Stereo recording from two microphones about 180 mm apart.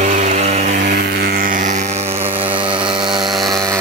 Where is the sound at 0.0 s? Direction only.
40° right (ahead or behind).